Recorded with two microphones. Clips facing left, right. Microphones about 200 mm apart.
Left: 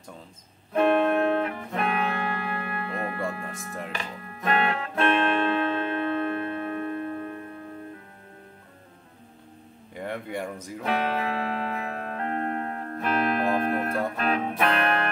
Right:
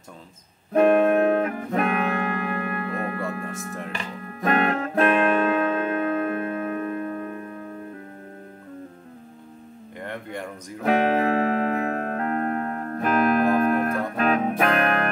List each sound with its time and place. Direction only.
0.7 s music: 45° right (ahead or behind)
9.9 s a sound: 10° left (ahead or behind)
10.8 s music: 45° right (ahead or behind)